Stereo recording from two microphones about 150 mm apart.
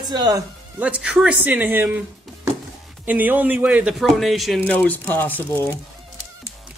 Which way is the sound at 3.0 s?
10° right (ahead or behind).